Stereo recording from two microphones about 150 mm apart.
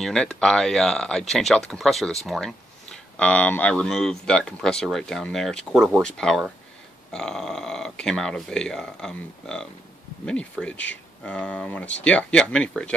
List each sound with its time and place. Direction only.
0.0 s speech: 5° left (ahead or behind)